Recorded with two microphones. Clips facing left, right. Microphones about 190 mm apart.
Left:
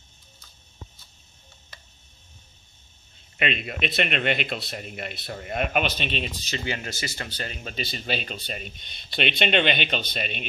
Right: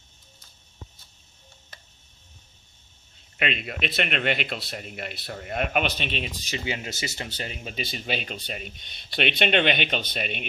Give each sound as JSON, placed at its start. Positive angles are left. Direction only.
{"t": 3.3, "sound": "speech", "side_deg": 0}
{"t": 6.5, "sound": "speech", "side_deg": -15}